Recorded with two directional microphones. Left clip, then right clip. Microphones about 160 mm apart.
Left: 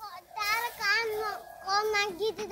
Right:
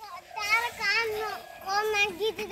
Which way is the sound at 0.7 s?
10° right (ahead or behind).